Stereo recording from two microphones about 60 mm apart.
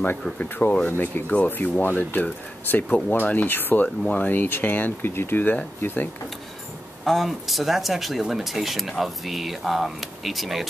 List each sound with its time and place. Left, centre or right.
0.4 s speech: left
3.8 s speech: left
7.1 s speech: centre